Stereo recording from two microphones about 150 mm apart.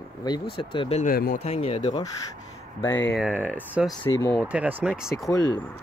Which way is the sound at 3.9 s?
20° left (ahead or behind).